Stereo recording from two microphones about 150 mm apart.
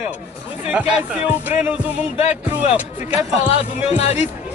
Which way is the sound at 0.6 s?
5° right (ahead or behind).